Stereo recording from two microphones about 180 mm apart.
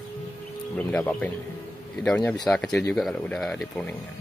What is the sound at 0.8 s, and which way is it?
Speech, 10° left (ahead or behind).